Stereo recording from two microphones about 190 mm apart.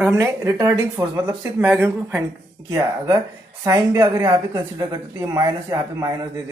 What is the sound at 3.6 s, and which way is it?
Speech, 15° right (ahead or behind).